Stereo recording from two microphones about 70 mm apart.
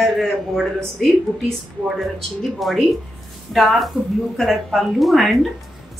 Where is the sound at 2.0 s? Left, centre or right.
Centre.